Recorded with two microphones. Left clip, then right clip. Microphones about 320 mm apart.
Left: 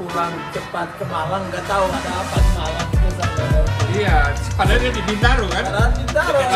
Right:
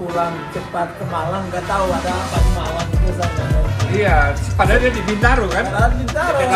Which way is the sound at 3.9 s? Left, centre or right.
Centre.